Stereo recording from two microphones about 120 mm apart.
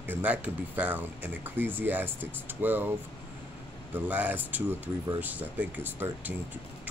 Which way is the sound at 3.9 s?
15° right (ahead or behind).